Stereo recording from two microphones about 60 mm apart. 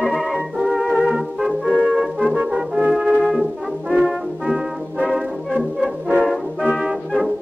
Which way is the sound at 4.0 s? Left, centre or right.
Centre.